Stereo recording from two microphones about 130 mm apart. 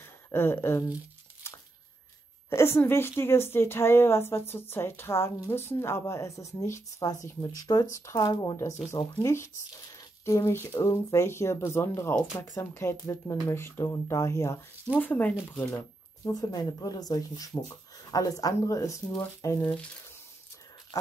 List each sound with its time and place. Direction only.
0.0 s speech: 20° left (ahead or behind)
1.4 s a sound: 20° left (ahead or behind)
2.5 s a woman's voice: 20° left (ahead or behind)
16.3 s a woman's voice: 30° left (ahead or behind)
20.9 s a woman's voice: 25° left (ahead or behind)